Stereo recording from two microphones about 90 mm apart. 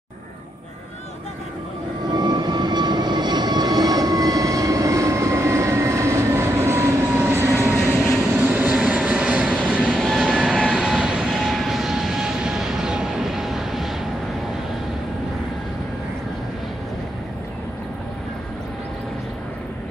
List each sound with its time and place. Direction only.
2.1 s vehicle: 55° right (ahead or behind); by 9.5 s 15° right (ahead or behind)
9.5 s vehicle: centre (ahead or behind)